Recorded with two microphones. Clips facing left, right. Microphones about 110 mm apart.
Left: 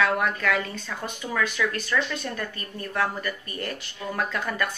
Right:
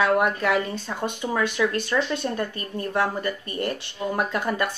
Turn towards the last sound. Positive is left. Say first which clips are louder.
# right 3 dB
turn(degrees=-25)  # may be behind; listen again after turning